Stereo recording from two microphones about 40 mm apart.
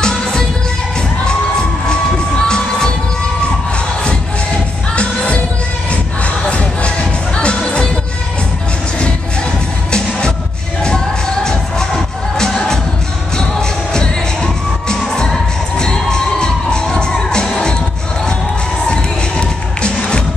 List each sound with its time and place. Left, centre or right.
1.9 s cheering: left
4.9 s music: left
9.8 s music: left
11.4 s music: centre
18.9 s music: left